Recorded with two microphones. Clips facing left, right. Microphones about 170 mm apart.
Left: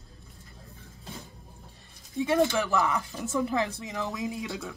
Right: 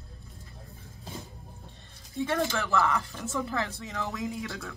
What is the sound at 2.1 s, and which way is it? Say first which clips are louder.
A woman's voice: left 4 dB; 10° left (ahead or behind).